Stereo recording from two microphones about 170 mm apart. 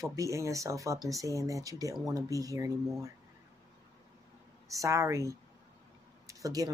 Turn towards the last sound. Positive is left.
turn(degrees=-20)  # may be behind; listen again after turning